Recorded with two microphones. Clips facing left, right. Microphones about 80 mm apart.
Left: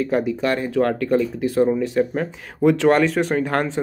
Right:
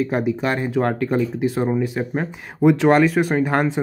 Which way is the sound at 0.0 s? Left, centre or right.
Centre.